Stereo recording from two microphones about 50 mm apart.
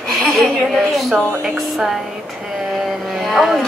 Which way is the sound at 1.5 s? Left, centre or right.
Centre.